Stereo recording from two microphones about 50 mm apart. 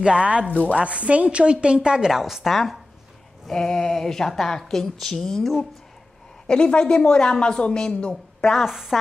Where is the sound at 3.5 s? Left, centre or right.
Centre.